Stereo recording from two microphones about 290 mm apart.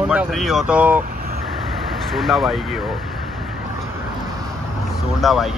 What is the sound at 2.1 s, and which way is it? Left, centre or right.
Speech, centre.